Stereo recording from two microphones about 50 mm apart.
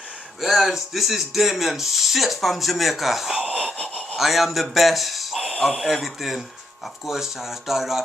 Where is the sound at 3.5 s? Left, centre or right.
Centre.